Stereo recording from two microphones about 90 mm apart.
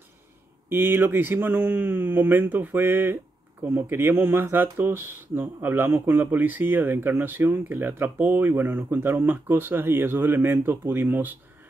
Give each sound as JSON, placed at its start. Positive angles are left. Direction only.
{"t": 0.7, "sound": "speech", "side_deg": -25}